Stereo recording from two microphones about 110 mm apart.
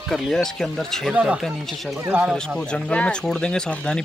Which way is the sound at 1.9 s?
20° right (ahead or behind).